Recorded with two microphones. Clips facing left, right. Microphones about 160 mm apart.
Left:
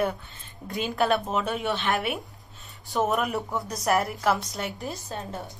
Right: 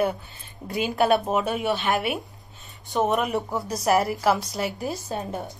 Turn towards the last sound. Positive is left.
turn(degrees=-15)  # may be behind; listen again after turning